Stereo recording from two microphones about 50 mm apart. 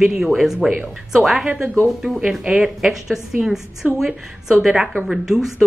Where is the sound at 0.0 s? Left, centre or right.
Centre.